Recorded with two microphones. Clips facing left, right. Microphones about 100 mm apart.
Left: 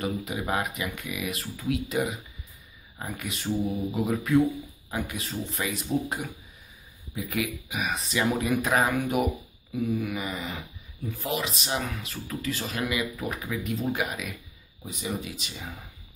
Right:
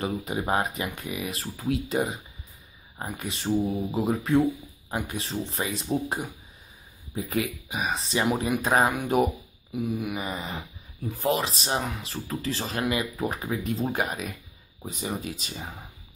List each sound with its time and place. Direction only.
0.0 s speech: 30° right (ahead or behind)
9.8 s a sound: 15° right (ahead or behind)
10.1 s speech: 35° right (ahead or behind)